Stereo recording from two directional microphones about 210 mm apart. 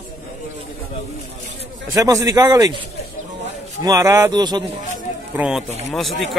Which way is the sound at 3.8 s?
15° right (ahead or behind).